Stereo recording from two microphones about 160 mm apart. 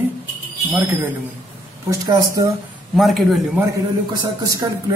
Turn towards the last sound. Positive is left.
turn(degrees=-20)  # may be behind; listen again after turning